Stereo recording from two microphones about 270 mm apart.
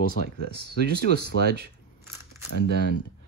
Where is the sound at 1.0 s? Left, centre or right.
Right.